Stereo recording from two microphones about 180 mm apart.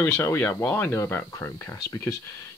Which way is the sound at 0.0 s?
10° left (ahead or behind).